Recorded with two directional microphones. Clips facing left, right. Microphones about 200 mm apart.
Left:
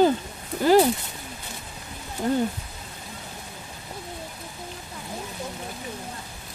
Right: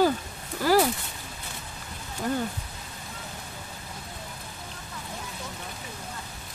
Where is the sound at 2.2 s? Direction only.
25° left (ahead or behind).